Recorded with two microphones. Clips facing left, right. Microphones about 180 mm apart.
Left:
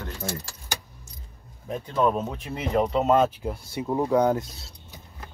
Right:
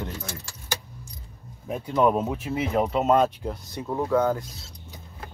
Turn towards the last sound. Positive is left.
turn(degrees=20)  # may be behind; listen again after turning